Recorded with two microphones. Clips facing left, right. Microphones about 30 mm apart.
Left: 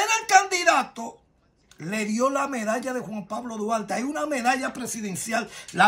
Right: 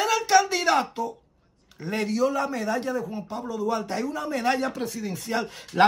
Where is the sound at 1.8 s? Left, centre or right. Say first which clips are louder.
Even; right.